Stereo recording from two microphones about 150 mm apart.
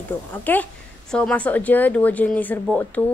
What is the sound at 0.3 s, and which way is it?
Speech, 10° left (ahead or behind).